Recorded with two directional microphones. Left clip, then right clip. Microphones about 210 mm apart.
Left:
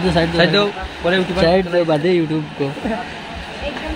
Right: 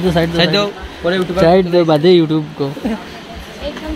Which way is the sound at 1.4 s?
30° right (ahead or behind).